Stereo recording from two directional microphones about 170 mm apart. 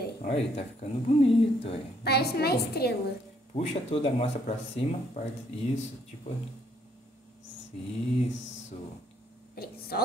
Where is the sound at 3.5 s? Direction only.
35° left (ahead or behind).